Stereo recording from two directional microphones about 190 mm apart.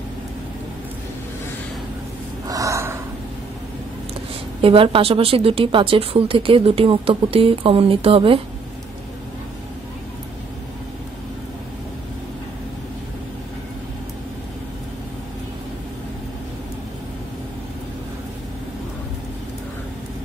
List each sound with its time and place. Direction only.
2.4 s gasp: 20° right (ahead or behind)
4.6 s speech: 30° right (ahead or behind)